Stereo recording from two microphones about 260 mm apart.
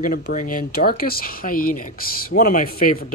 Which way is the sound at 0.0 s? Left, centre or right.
Left.